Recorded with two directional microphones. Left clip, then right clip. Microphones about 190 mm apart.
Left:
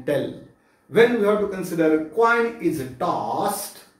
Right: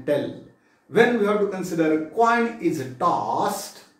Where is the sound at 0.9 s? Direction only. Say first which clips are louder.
Left 2 dB; centre (ahead or behind).